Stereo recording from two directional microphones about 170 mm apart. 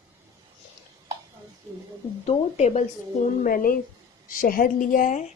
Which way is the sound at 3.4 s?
55° left (ahead or behind).